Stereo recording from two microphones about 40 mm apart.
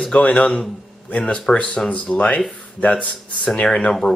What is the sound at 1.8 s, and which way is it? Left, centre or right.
Speech, left.